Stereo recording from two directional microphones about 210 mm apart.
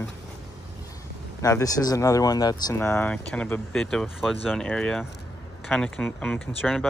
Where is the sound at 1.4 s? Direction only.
15° left (ahead or behind).